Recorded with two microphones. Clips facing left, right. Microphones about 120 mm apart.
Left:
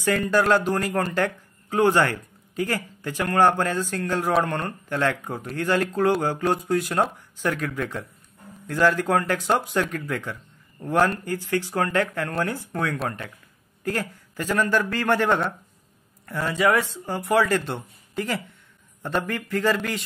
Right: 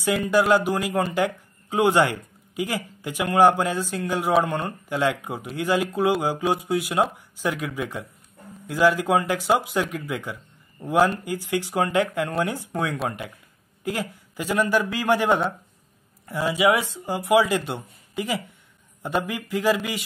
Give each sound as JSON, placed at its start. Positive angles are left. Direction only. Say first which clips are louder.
{"t": 0.2, "sound": "a man's voice", "louder": "right 2 dB", "side_deg": -10}